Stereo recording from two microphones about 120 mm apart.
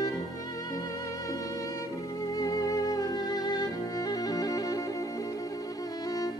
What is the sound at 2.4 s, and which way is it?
Music, 30° left (ahead or behind).